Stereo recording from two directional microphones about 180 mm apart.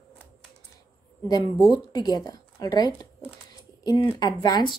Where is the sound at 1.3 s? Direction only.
25° left (ahead or behind).